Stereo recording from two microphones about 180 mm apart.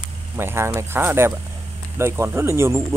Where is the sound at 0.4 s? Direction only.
15° right (ahead or behind).